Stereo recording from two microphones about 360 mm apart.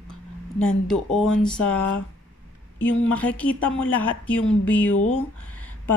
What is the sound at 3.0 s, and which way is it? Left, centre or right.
Speech, centre.